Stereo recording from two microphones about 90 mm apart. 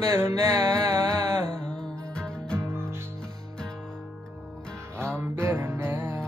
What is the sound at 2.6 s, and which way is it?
Music, 25° right (ahead or behind).